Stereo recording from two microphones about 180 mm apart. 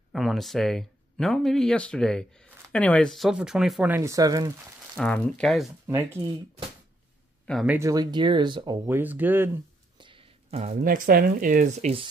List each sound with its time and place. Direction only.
0.1 s speech: centre (ahead or behind); by 4.5 s 20° right (ahead or behind)
4.9 s speech: 5° left (ahead or behind)
5.9 s speech: 15° right (ahead or behind)
7.6 s speech: 10° right (ahead or behind)
7.9 s speech: 25° right (ahead or behind)
8.8 s speech: 10° right (ahead or behind)
9.9 s a sound: 30° right (ahead or behind)
10.8 s speech: 50° right (ahead or behind)